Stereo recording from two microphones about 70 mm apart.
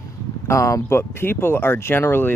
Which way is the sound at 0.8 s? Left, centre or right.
Left.